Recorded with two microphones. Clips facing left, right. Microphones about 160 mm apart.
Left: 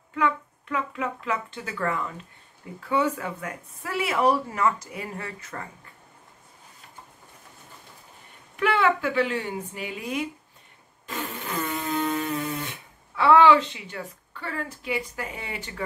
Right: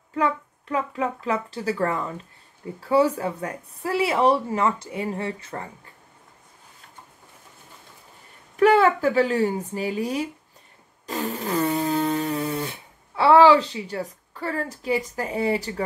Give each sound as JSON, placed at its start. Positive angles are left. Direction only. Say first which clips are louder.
{"t": 0.1, "sound": "speech", "louder": "right 2 dB", "side_deg": -35}
{"t": 8.5, "sound": "a woman's voice", "louder": "right 6 dB", "side_deg": -40}
{"t": 11.1, "sound": "a sound", "louder": "right 6 dB", "side_deg": -40}